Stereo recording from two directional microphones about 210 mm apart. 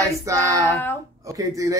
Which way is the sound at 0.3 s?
15° right (ahead or behind).